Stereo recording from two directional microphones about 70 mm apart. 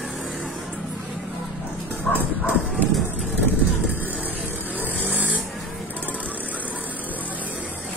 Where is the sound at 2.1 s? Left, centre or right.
Centre.